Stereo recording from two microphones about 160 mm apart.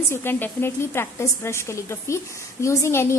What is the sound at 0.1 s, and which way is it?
A woman's voice, 15° left (ahead or behind).